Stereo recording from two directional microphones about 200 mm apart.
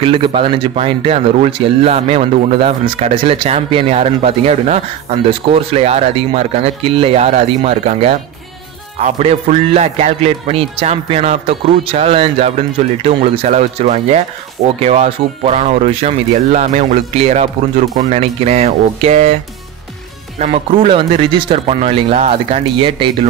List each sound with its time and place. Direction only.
0.0 s speech: 25° right (ahead or behind)
20.3 s speech: 30° right (ahead or behind)